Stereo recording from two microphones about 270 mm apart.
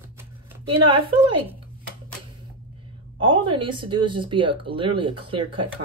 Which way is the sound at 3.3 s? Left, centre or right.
Centre.